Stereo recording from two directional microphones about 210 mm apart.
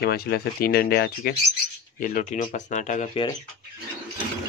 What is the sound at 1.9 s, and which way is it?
Speech, 40° left (ahead or behind).